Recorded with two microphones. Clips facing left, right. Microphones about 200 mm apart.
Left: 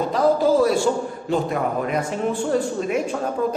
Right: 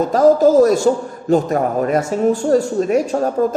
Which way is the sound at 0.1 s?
45° right (ahead or behind).